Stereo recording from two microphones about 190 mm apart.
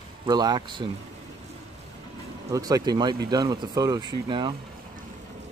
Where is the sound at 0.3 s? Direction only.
20° right (ahead or behind).